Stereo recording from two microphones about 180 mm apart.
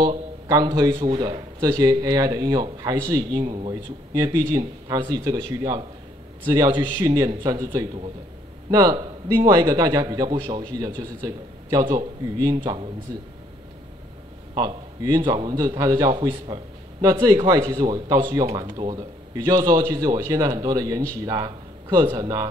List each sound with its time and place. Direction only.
0.0 s a man's voice: 25° right (ahead or behind)
14.5 s a man's voice: 25° right (ahead or behind)